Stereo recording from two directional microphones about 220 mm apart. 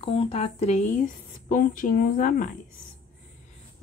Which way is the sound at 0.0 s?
25° left (ahead or behind).